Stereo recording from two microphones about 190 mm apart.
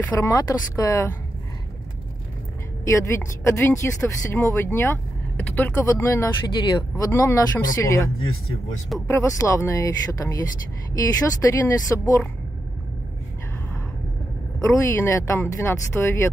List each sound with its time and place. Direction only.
0.0 s speech: 15° left (ahead or behind)
2.8 s speech: 15° left (ahead or behind)
11.4 s speech: 15° left (ahead or behind)
14.6 s speech: 15° left (ahead or behind)